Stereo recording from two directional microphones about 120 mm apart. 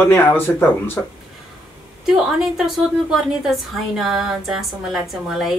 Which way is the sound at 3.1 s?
Centre (ahead or behind).